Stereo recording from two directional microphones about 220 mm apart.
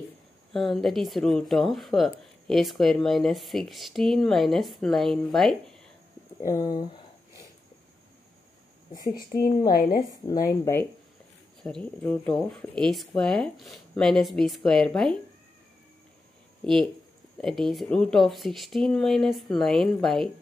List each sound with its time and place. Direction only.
0.5 s speech: centre (ahead or behind)
6.4 s speech: 15° left (ahead or behind)
6.8 s a sound: 20° left (ahead or behind)
8.9 s speech: 15° left (ahead or behind)
9.6 s a woman's voice: 40° left (ahead or behind)
10.6 s speech: 10° left (ahead or behind)
16.6 s speech: 5° left (ahead or behind)